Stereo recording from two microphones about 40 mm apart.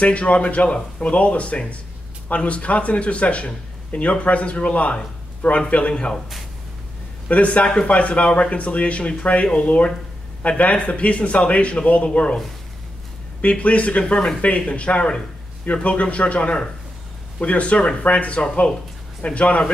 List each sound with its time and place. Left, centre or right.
0.0 s a man's voice: left
1.1 s a man's voice: left
7.2 s a man's voice: left
13.4 s a man's voice: left